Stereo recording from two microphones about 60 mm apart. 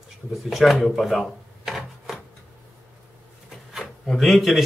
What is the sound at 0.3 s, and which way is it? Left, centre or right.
Speech, centre.